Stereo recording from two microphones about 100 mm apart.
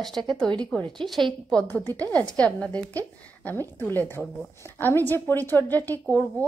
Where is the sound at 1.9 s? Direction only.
15° left (ahead or behind).